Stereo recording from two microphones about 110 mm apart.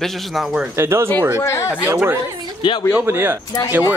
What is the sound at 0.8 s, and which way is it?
Speech, 25° right (ahead or behind).